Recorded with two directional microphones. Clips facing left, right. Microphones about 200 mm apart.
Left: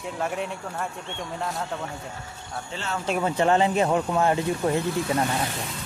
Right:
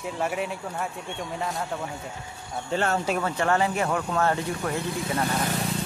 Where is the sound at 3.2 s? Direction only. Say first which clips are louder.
Left 7 dB; 20° left (ahead or behind).